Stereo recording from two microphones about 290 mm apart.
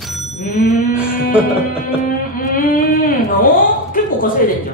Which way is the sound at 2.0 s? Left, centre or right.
Left.